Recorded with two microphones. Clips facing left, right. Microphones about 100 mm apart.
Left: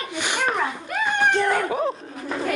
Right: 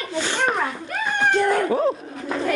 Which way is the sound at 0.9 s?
20° left (ahead or behind).